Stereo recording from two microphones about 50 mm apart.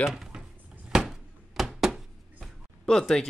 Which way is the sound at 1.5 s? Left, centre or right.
Centre.